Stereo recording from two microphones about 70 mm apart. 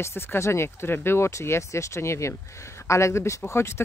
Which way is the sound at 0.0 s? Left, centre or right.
Left.